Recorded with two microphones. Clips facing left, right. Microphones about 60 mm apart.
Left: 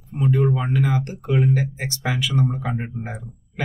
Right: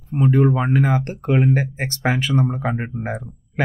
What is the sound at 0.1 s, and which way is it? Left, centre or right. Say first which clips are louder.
Speech: right 4 dB; right.